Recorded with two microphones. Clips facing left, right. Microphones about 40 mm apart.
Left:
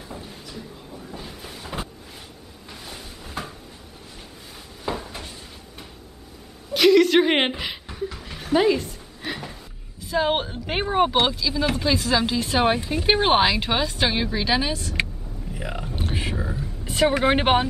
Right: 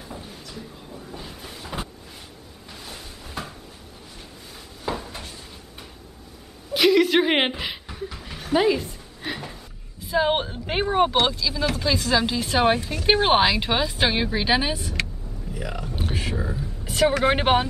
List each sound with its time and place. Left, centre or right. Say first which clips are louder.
0.0 s a sound: left 1 dB; centre
4.8 s drawer open or close: even; centre
6.7 s chuckle: left 2 dB; centre
11.2 s speech: left 1 dB; centre
15.5 s speech: even; centre
16.0 s a sound: even; centre
17.2 s speech: left 1 dB; centre